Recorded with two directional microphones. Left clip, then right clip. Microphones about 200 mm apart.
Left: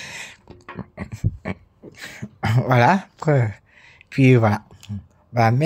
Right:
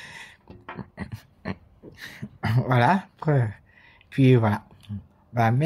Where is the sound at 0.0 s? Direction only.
45° left (ahead or behind).